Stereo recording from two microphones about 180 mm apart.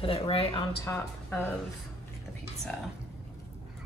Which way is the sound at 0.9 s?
15° left (ahead or behind).